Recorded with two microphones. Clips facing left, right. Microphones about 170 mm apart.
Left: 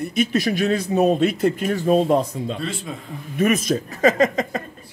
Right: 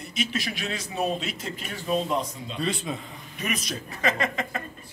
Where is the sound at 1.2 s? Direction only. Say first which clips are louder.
Left 15 dB; 60° left (ahead or behind).